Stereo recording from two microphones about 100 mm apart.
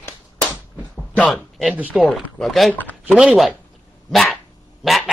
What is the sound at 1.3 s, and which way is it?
Speech, centre (ahead or behind).